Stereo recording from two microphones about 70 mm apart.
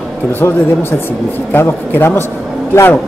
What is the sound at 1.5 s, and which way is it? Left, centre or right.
Speech, left.